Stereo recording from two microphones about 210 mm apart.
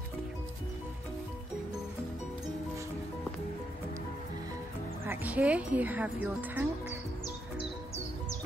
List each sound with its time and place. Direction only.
5.0 s speech: 10° right (ahead or behind)
7.5 s music: 30° left (ahead or behind)